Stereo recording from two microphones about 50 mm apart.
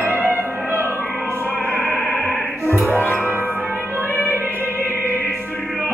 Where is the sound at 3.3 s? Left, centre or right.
Right.